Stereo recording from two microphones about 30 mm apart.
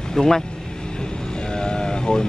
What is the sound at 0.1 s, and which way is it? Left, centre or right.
Speech, centre.